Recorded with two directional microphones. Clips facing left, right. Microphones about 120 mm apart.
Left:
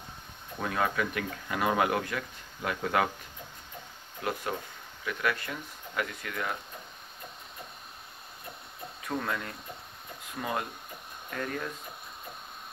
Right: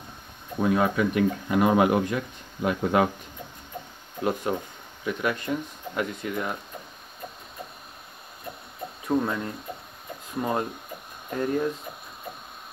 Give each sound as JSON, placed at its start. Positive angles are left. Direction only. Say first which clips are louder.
{"t": 0.6, "sound": "speech", "louder": "right 7 dB", "side_deg": -15}
{"t": 4.2, "sound": "speech", "louder": "right 7 dB", "side_deg": -20}
{"t": 9.0, "sound": "speech", "louder": "right 8 dB", "side_deg": -15}
{"t": 10.4, "sound": "speech", "louder": "right 6 dB", "side_deg": -30}